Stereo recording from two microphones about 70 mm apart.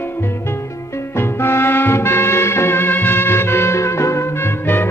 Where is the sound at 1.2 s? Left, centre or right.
Left.